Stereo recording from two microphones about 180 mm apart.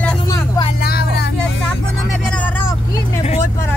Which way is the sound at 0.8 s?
60° left (ahead or behind).